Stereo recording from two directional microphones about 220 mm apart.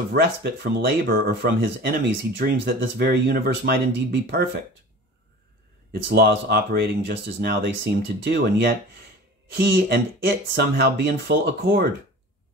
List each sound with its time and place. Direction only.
0.1 s speech: 45° right (ahead or behind)
6.0 s speech: 45° right (ahead or behind)